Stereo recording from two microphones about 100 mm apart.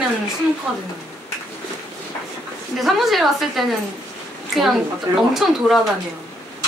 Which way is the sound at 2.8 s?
Centre (ahead or behind).